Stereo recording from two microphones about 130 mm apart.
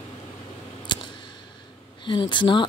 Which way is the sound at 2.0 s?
40° left (ahead or behind).